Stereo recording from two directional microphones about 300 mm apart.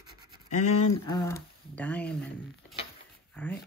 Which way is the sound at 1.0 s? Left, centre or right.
Centre.